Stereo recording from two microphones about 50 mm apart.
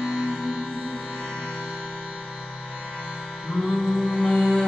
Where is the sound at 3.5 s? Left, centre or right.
Centre.